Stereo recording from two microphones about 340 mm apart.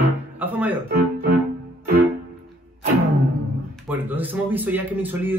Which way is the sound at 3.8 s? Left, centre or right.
Centre.